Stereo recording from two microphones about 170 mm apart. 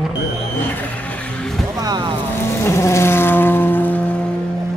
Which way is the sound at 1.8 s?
25° right (ahead or behind).